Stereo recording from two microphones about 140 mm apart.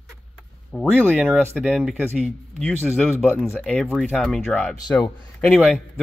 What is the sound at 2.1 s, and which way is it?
A man's voice, 5° left (ahead or behind).